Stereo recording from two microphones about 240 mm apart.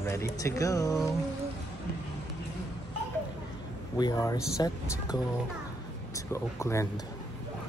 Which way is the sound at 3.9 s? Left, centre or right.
Centre.